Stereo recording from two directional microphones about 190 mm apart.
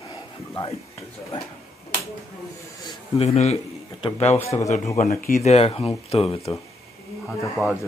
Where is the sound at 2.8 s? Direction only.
30° left (ahead or behind).